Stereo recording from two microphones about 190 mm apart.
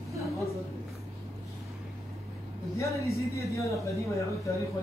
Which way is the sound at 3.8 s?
15° left (ahead or behind).